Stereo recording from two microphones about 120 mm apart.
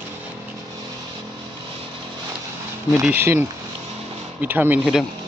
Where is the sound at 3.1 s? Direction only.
20° right (ahead or behind).